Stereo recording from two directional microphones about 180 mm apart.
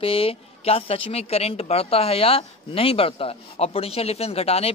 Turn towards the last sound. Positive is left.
turn(degrees=35)  # may be behind; listen again after turning